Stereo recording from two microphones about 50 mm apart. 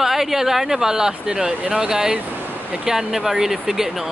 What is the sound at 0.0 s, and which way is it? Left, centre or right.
Speech, centre.